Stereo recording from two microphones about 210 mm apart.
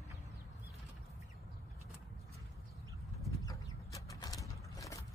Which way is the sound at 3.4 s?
15° left (ahead or behind).